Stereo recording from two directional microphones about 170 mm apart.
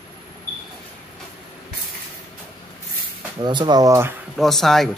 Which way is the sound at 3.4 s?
25° right (ahead or behind).